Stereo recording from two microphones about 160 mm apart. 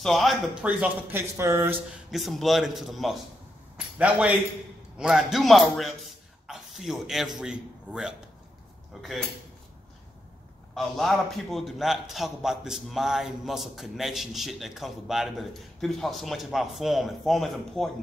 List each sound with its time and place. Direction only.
0.0 s a man's voice: centre (ahead or behind)
1.3 s speech: 20° right (ahead or behind)
2.0 s a man's voice: centre (ahead or behind)
10.7 s a man's voice: centre (ahead or behind)